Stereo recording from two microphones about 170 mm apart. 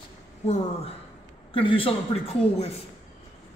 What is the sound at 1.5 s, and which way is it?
A man's voice, 30° left (ahead or behind).